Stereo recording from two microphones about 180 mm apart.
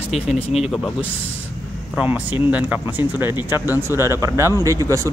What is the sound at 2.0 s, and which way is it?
A man's voice, 10° right (ahead or behind).